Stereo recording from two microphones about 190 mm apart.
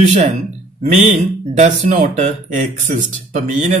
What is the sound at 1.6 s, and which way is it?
Speech, 35° right (ahead or behind).